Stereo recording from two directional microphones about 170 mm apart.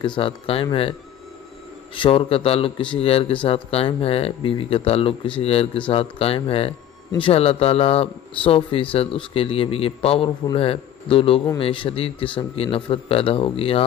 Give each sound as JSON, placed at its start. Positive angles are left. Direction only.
{"t": 0.0, "sound": "speech", "side_deg": 30}
{"t": 2.0, "sound": "speech", "side_deg": 30}